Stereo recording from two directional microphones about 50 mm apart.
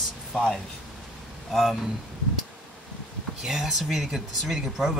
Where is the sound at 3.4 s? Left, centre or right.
Centre.